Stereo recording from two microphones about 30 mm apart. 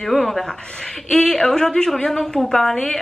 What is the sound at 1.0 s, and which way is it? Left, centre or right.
A woman's voice, centre.